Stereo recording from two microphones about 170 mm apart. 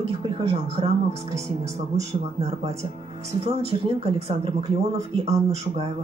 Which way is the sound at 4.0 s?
35° right (ahead or behind).